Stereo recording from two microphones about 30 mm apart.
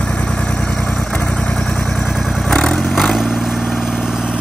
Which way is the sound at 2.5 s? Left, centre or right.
Left.